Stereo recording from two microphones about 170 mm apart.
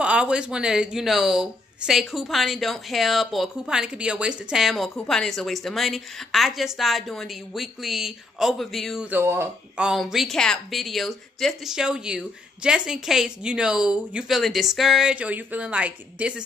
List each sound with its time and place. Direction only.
0.0 s speech: 5° right (ahead or behind)